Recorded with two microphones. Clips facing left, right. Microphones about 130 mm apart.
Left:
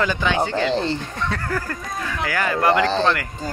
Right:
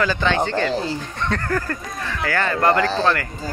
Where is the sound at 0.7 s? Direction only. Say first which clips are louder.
Left 2 dB; 5° right (ahead or behind).